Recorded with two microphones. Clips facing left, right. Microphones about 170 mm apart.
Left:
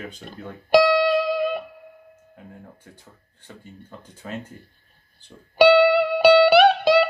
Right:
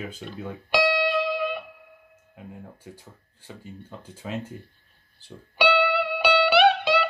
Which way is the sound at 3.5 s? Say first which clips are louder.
Right 1 dB; 10° right (ahead or behind).